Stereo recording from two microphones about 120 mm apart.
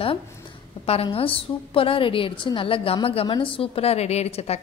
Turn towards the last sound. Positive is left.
turn(degrees=60)  # may be behind; listen again after turning